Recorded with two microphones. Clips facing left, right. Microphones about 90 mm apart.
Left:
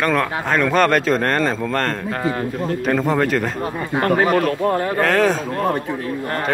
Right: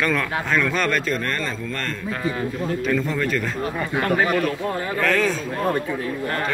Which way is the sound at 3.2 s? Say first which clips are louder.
Left 5 dB; 70° left (ahead or behind).